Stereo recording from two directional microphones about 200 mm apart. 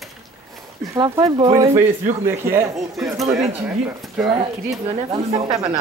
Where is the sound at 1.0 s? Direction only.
20° right (ahead or behind).